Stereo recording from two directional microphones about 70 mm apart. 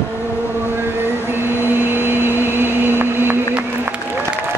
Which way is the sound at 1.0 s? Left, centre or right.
Right.